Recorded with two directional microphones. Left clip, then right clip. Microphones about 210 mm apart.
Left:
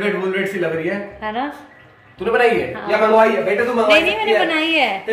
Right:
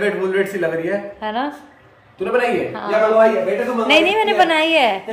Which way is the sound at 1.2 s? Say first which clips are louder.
Right 1 dB; 5° right (ahead or behind).